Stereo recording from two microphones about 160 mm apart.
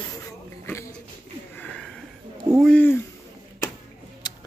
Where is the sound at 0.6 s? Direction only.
15° left (ahead or behind).